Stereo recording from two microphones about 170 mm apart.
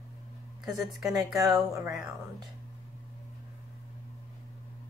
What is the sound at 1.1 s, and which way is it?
Speech, 20° right (ahead or behind).